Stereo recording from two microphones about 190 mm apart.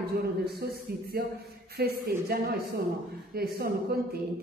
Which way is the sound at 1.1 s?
55° right (ahead or behind).